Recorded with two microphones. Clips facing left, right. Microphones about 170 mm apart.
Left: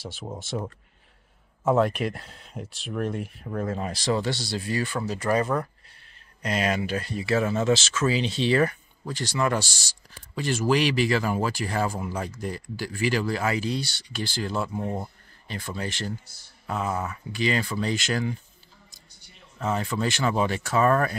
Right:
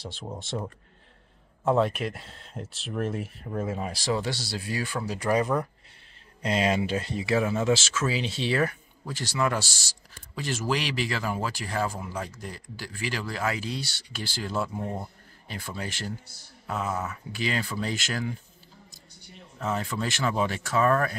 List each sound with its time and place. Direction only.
0.0 s speech: 5° left (ahead or behind); by 5.7 s 15° right (ahead or behind)
6.4 s speech: 25° right (ahead or behind); by 18.3 s 5° right (ahead or behind)
19.6 s speech: centre (ahead or behind)